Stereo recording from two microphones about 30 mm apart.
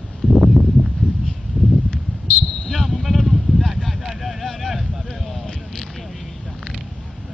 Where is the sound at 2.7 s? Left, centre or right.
Centre.